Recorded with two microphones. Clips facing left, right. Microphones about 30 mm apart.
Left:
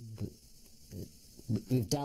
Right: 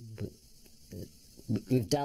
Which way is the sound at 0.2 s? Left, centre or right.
Right.